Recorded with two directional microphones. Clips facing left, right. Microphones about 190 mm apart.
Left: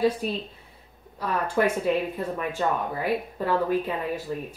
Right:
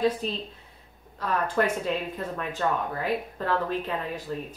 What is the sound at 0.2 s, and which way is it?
Speech, 10° left (ahead or behind).